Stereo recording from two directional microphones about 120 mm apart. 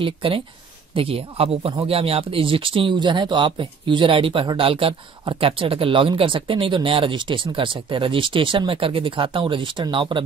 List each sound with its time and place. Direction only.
0.0 s speech: 45° right (ahead or behind)